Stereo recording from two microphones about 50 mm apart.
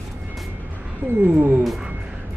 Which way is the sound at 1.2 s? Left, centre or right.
Right.